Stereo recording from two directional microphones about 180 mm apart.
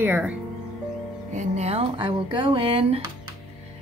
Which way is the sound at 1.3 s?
40° right (ahead or behind).